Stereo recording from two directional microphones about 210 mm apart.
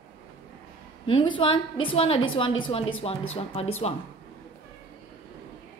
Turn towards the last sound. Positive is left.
turn(degrees=30)  # may be behind; listen again after turning